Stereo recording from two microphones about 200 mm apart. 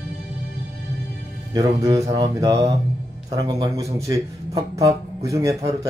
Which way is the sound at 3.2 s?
20° right (ahead or behind).